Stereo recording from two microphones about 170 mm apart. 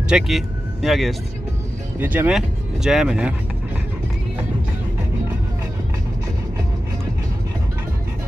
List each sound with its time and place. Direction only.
0.1 s speech: centre (ahead or behind)
2.0 s speech: 10° right (ahead or behind)